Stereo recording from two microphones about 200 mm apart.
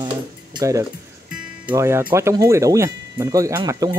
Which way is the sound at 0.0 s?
20° right (ahead or behind).